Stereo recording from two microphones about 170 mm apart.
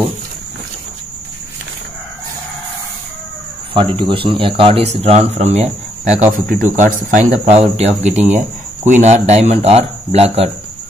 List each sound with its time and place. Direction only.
3.7 s speech: 30° right (ahead or behind)
6.3 s speech: 50° right (ahead or behind)